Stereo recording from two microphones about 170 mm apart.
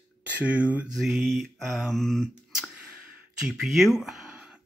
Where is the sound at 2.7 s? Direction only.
5° right (ahead or behind).